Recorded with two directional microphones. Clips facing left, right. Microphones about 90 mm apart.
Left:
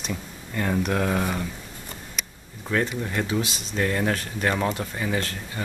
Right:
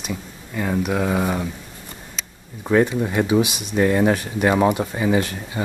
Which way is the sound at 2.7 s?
15° right (ahead or behind).